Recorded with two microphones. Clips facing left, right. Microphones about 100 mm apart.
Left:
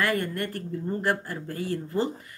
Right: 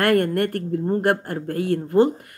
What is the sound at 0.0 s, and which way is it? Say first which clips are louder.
Speech: right 8 dB; 60° right (ahead or behind).